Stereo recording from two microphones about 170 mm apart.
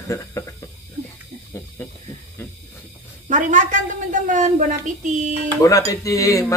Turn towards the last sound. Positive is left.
turn(degrees=20)  # may be behind; listen again after turning